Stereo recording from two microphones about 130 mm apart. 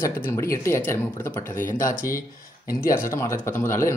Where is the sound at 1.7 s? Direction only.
90° left.